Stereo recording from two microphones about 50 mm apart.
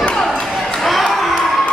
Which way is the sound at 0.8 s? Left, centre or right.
Centre.